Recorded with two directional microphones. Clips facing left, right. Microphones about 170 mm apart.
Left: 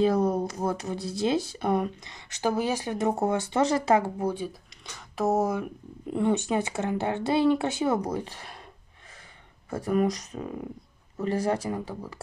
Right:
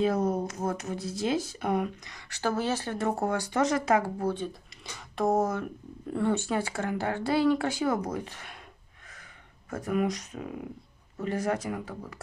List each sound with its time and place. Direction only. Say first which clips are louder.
0.0 s speech: left 3 dB; 35° left (ahead or behind)
4.2 s speech: left 1 dB; 10° left (ahead or behind)
4.8 s speech: left 1 dB; centre (ahead or behind); by 8.5 s 35° left (ahead or behind)
9.7 s speech: left 3 dB; 35° left (ahead or behind)